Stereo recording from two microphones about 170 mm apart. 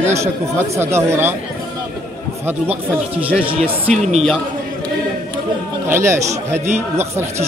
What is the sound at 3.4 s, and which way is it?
Speech, 35° right (ahead or behind).